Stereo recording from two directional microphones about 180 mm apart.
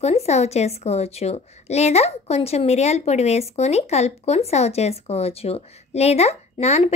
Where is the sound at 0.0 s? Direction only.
35° left (ahead or behind).